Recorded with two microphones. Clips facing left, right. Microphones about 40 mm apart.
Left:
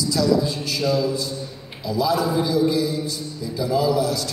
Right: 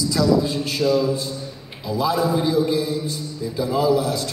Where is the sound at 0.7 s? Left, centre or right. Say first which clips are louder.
Right 3 dB; right.